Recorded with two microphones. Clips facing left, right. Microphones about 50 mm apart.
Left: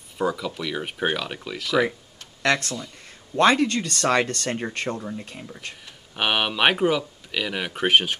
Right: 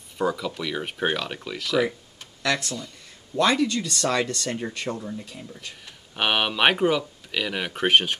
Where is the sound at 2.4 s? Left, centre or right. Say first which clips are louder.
Left 3 dB; left.